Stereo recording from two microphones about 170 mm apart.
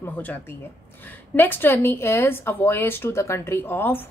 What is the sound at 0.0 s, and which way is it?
Speech, 10° left (ahead or behind).